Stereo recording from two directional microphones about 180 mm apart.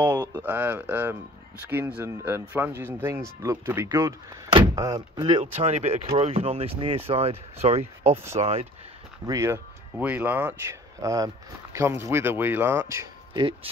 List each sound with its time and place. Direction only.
0.0 s speech: 15° right (ahead or behind)
5.4 s speech: 35° right (ahead or behind)
9.2 s speech: 15° right (ahead or behind)